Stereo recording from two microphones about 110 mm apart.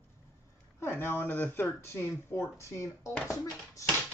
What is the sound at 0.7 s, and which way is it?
Speech, 20° left (ahead or behind).